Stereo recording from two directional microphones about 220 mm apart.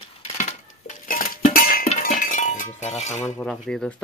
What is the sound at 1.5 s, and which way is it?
Music, 40° left (ahead or behind).